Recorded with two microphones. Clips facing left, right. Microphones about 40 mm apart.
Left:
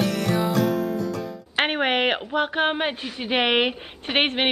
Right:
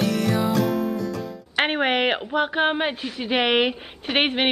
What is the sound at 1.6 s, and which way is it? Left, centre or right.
A woman's voice, centre.